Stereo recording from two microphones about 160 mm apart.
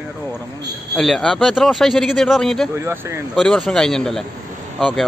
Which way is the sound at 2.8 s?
15° right (ahead or behind).